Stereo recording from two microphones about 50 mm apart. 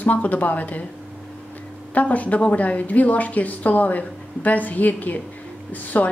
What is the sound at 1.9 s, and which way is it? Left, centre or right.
A woman's voice, left.